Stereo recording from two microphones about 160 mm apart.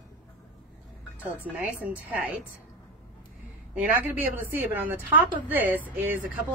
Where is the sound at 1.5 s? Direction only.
10° right (ahead or behind).